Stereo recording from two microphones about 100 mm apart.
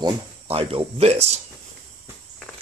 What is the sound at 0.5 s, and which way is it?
Speech, 75° right (ahead or behind).